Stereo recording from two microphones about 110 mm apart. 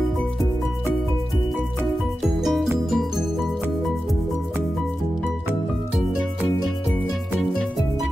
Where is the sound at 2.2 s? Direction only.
Centre (ahead or behind).